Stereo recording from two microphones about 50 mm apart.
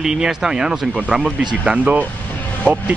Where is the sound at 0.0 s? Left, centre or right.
Centre.